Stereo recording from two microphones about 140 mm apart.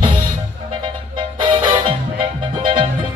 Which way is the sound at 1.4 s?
35° right (ahead or behind).